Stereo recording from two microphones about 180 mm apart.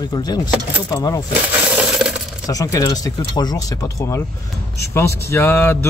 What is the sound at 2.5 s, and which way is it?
Speech, 20° left (ahead or behind).